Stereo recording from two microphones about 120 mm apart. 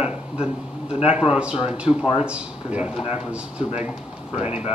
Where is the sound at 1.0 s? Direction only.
10° right (ahead or behind).